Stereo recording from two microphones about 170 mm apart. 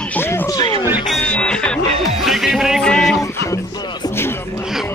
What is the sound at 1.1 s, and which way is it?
Music, 5° left (ahead or behind).